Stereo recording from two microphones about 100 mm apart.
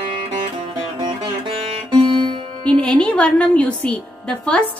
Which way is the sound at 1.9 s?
60° right (ahead or behind).